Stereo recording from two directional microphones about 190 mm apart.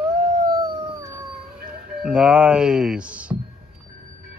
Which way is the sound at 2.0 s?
5° right (ahead or behind).